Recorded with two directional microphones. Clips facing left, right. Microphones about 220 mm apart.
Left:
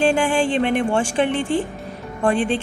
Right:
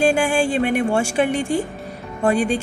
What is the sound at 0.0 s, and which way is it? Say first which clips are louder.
A woman's voice: even; 10° right (ahead or behind).